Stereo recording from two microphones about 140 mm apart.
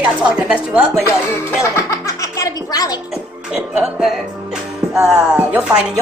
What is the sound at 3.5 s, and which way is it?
Speech, 5° right (ahead or behind).